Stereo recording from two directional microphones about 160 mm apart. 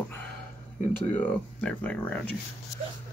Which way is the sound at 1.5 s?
10° left (ahead or behind).